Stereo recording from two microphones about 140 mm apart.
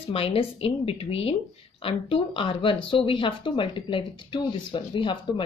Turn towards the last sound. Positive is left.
turn(degrees=35)  # may be behind; listen again after turning